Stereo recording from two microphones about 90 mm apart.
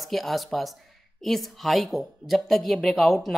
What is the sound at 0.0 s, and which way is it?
Speech, centre (ahead or behind).